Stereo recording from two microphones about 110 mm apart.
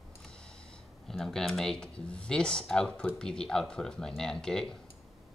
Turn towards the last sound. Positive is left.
turn(degrees=5)  # may be behind; listen again after turning